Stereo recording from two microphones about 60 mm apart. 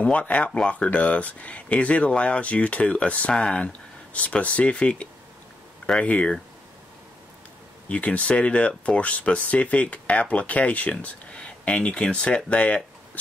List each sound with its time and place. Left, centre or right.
0.0 s speech: left
7.9 s speech: left